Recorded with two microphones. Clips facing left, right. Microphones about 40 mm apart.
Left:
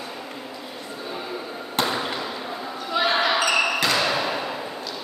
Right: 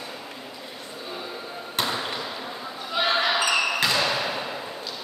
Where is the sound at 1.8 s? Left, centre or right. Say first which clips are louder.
Left 3 dB; centre.